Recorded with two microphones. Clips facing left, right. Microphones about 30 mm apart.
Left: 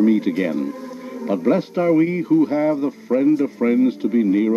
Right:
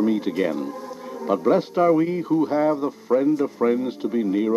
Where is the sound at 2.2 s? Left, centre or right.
Centre.